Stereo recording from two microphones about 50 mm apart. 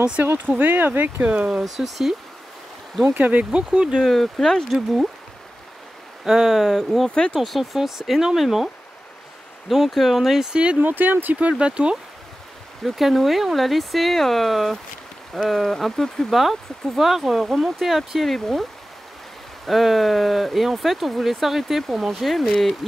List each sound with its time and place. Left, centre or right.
0.5 s speech: right
1.2 s speech: right
1.6 s speech: centre
3.2 s speech: right
4.0 s speech: centre
6.2 s speech: centre
9.7 s speech: centre
10.5 s speech: right
10.8 s speech: right
11.6 s speech: right
12.8 s speech: centre